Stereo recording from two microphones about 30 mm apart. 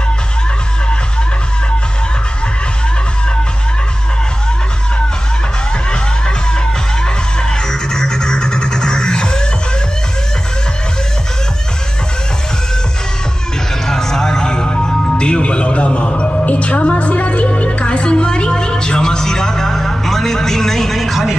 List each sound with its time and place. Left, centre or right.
7.9 s music: left
13.8 s music: centre